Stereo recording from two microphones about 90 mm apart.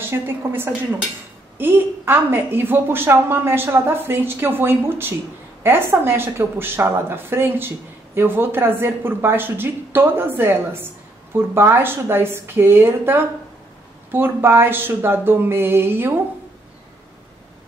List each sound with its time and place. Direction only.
0.0 s a woman's voice: 25° right (ahead or behind)